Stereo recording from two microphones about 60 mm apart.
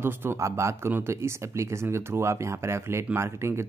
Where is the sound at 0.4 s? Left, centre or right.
Right.